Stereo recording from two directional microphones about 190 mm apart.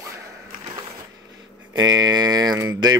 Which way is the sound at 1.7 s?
20° right (ahead or behind).